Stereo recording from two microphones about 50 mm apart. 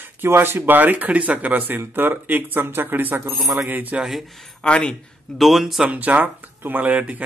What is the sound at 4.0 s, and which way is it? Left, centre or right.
Speech, centre.